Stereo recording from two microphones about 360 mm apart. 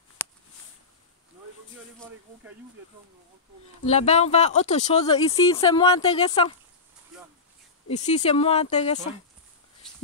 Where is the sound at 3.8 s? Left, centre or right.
Centre.